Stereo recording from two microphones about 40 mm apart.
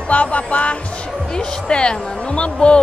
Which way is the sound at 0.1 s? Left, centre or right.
Left.